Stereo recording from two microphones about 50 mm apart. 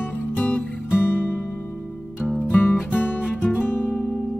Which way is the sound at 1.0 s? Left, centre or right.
Left.